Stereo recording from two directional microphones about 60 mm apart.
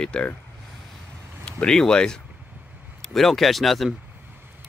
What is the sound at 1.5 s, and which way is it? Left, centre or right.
Speech, centre.